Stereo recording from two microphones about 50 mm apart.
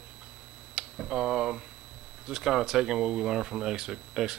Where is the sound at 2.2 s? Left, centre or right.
Centre.